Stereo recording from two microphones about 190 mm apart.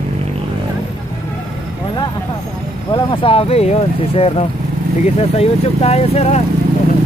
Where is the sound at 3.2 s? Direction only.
30° left (ahead or behind).